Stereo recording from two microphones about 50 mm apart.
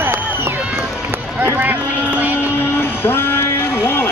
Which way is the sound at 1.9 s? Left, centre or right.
Right.